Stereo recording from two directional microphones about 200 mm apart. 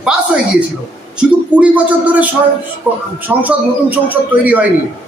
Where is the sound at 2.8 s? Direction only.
5° right (ahead or behind).